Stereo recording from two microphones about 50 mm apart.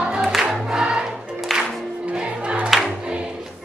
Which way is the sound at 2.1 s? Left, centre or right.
Right.